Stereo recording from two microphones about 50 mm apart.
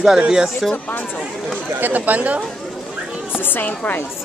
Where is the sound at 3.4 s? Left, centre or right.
Left.